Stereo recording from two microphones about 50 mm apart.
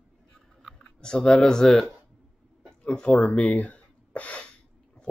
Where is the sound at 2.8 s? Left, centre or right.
Centre.